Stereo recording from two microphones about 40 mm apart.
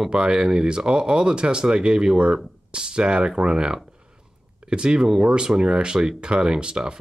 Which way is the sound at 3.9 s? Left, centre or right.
Right.